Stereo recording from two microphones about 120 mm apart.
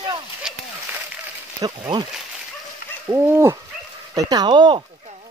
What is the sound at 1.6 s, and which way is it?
Speech, 35° right (ahead or behind).